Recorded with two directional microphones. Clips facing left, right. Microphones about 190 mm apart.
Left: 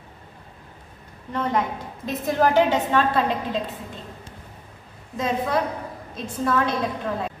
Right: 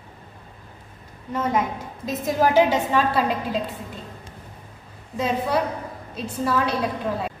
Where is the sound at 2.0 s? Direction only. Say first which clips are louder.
Right 1 dB; 40° right (ahead or behind).